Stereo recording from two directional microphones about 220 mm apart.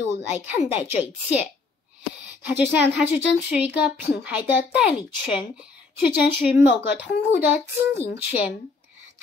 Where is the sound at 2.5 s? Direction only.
5° right (ahead or behind).